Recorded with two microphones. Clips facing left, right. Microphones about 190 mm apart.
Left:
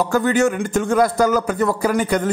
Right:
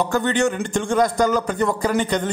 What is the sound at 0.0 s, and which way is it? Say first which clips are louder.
A man's voice: left 3 dB; 5° left (ahead or behind).